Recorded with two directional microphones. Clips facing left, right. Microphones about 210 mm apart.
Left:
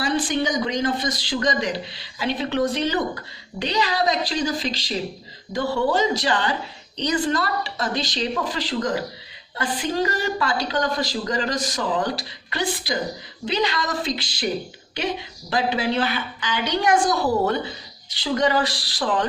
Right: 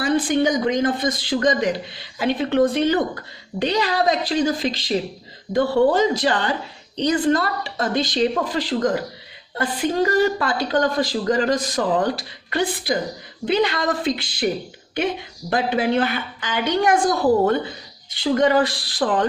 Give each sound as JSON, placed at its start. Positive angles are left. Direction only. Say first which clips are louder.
{"t": 0.0, "sound": "a woman's voice", "louder": "right 4 dB", "side_deg": -55}